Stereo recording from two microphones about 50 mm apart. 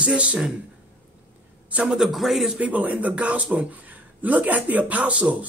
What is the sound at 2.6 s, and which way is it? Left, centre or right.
Speech, right.